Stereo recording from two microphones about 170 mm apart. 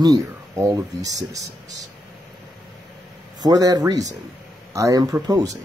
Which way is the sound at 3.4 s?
20° right (ahead or behind).